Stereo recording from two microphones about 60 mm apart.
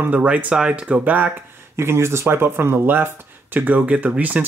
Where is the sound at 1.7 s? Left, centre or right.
Right.